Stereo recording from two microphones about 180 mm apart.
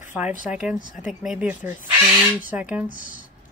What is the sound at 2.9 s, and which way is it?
Speech, 45° left (ahead or behind).